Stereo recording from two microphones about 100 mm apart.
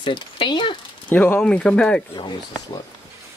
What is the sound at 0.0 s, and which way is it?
Speech, 55° left (ahead or behind).